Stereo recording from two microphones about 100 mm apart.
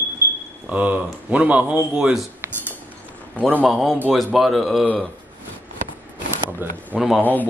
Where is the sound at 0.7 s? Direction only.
15° right (ahead or behind).